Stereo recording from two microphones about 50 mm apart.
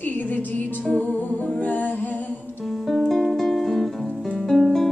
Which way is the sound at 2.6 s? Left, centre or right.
Centre.